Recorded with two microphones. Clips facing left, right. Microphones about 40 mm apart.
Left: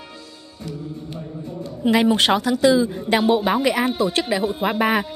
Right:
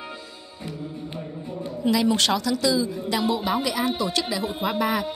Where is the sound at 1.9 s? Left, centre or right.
Left.